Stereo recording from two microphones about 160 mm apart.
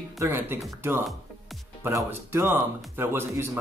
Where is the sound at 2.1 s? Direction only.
15° right (ahead or behind).